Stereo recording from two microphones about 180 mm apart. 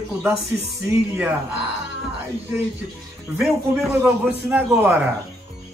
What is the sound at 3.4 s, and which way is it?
Speech, centre (ahead or behind).